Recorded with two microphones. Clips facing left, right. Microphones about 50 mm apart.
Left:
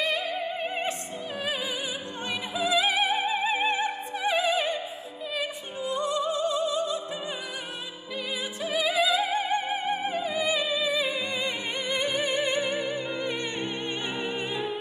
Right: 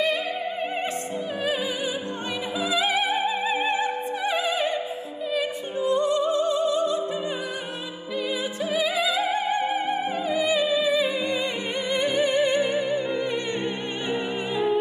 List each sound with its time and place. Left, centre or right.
5.9 s music: centre
8.6 s opera: centre
10.5 s music: left
12.4 s music: right